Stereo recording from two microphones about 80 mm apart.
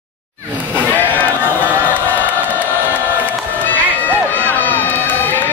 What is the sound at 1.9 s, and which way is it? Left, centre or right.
Crowd, left.